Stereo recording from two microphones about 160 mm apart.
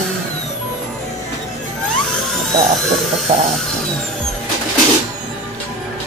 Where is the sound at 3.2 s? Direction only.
45° right (ahead or behind).